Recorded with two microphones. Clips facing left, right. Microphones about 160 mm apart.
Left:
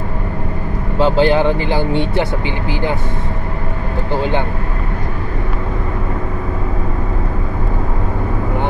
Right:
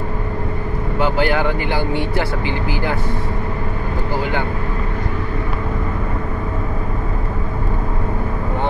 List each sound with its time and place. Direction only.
0.9 s speech: 25° left (ahead or behind)
4.1 s speech: 25° left (ahead or behind)